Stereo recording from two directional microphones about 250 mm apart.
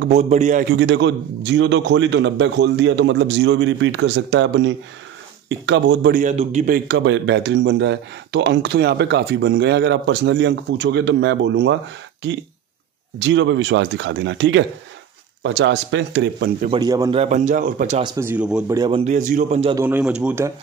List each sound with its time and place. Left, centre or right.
0.1 s a man's voice: right
0.7 s speech: right
6.2 s a man's voice: right
6.9 s speech: right
16.7 s a man's voice: centre
17.2 s a man's voice: right
18.0 s a man's voice: centre
18.8 s a man's voice: right
19.8 s a man's voice: centre